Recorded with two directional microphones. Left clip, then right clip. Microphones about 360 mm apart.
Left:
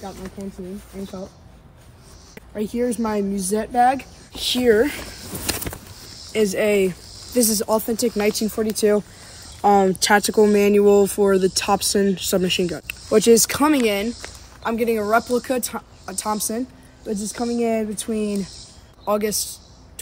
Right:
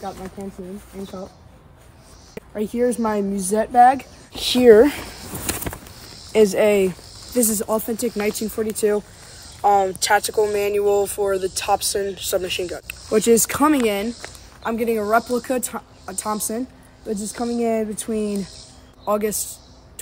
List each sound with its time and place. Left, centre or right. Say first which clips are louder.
0.0 s speech: right 2 dB; centre
2.3 s speech: right 1 dB; centre
5.5 s a sound: left 1 dB; centre
6.3 s speech: right 3 dB; centre
8.5 s speech: left 1 dB; centre
13.2 s speech: left 1 dB; centre